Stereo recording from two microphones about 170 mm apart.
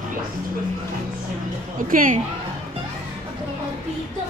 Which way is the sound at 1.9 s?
55° right (ahead or behind).